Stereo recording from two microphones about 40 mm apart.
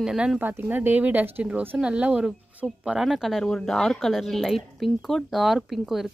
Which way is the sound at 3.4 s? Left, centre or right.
Centre.